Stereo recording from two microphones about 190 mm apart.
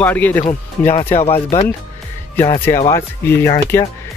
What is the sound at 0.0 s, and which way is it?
Speech, 10° left (ahead or behind).